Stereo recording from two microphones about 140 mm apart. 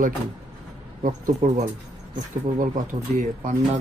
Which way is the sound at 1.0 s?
60° right (ahead or behind).